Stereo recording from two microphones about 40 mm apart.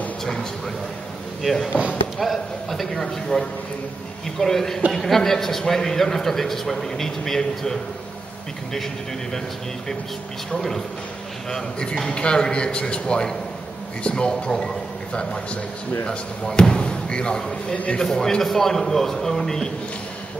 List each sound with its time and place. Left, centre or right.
0.2 s a man's voice: centre
1.4 s a man's voice: centre
10.5 s a man's voice: centre
16.1 s a man's voice: left